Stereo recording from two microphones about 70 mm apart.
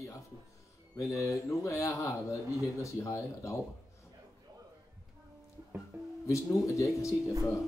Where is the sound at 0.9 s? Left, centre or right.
Left.